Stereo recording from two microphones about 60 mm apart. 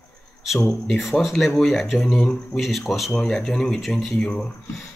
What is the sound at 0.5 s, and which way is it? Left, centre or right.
Speech, centre.